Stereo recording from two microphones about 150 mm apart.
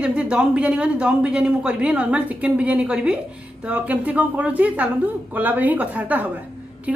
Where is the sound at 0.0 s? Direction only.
5° right (ahead or behind).